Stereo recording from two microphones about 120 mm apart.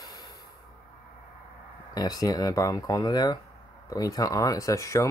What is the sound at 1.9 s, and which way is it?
Speech, 30° left (ahead or behind).